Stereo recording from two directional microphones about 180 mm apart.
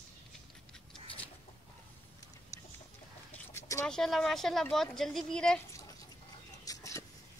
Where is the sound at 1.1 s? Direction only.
5° left (ahead or behind).